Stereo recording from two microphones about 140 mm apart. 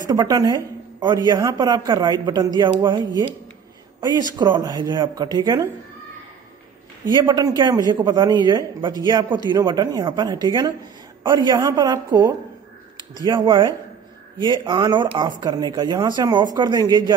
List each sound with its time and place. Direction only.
0.1 s a man's voice: 25° right (ahead or behind)
4.4 s a man's voice: 30° right (ahead or behind)
7.1 s a man's voice: 30° right (ahead or behind)